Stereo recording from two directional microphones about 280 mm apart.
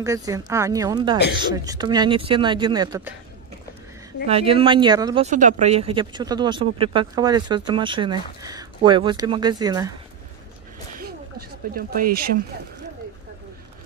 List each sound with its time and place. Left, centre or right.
0.0 s speech: centre
4.3 s speech: centre
11.0 s a sound: right